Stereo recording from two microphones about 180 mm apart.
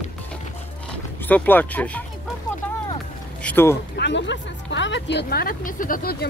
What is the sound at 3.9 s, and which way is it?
A woman's voice, 80° left.